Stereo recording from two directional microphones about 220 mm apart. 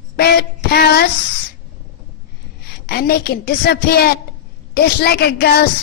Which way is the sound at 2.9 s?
45° left (ahead or behind).